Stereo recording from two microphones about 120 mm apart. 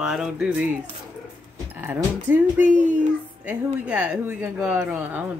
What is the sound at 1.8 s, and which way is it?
Speech, 20° right (ahead or behind).